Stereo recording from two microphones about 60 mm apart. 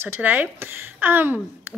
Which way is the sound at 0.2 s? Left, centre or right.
Right.